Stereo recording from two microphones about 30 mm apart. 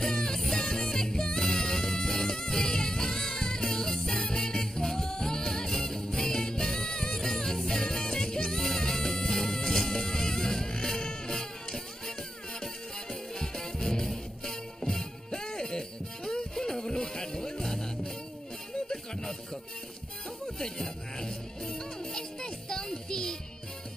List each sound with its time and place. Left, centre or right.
0.0 s music: centre
13.1 s music: centre
20.4 s music: centre